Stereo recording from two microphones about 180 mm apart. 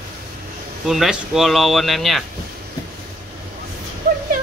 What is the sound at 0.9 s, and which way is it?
Speech, centre (ahead or behind).